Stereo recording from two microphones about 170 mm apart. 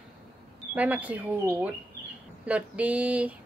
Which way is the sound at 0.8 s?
10° right (ahead or behind).